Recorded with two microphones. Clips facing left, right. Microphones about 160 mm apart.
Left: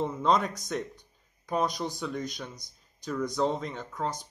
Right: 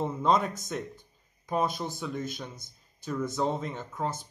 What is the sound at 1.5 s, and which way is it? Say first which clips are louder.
A man's voice: even; 5° right (ahead or behind).